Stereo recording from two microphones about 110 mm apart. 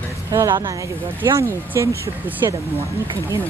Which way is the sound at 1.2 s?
25° right (ahead or behind).